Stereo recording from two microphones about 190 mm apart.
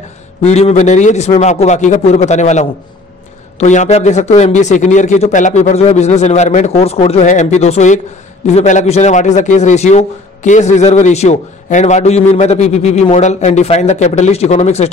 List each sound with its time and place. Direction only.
0.4 s a man's voice: 35° left (ahead or behind)